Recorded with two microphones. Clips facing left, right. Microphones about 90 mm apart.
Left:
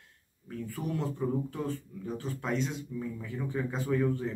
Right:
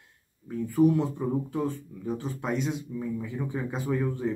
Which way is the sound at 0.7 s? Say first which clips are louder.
Right 11 dB; 20° right (ahead or behind).